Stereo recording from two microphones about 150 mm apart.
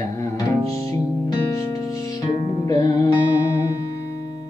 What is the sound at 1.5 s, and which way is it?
Music, 20° left (ahead or behind).